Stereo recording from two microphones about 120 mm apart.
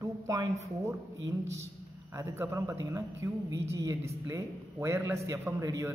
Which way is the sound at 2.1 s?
25° right (ahead or behind).